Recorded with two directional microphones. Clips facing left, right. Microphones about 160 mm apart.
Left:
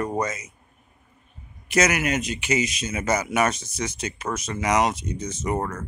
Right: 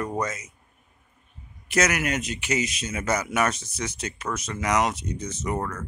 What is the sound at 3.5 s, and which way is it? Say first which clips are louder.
Speech: left 3 dB; 90° left.